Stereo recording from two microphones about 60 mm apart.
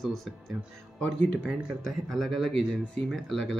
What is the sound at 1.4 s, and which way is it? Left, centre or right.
Speech, centre.